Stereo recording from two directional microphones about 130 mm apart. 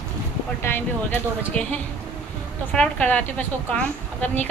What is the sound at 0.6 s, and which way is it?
A woman's voice, 15° left (ahead or behind).